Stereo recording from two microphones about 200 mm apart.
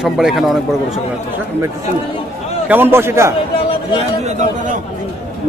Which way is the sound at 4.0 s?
35° right (ahead or behind).